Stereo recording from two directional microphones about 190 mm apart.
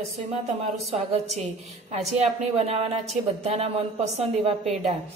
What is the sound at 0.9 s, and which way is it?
Speech, 35° right (ahead or behind).